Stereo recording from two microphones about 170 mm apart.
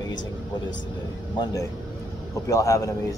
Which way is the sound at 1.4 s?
20° left (ahead or behind).